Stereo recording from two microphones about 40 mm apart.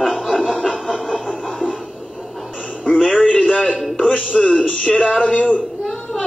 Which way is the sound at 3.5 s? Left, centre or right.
Left.